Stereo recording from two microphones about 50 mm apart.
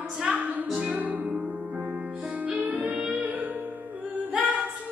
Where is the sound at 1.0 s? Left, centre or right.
Right.